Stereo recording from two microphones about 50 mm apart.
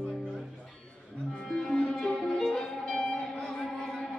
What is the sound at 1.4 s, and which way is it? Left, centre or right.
Music, centre.